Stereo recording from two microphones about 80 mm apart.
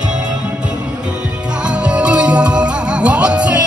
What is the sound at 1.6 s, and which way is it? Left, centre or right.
Music, centre.